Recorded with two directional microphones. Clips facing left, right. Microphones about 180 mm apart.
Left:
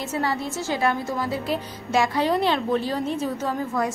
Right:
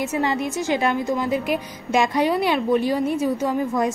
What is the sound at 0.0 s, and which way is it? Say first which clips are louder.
A woman's voice: right 4 dB; 20° right (ahead or behind).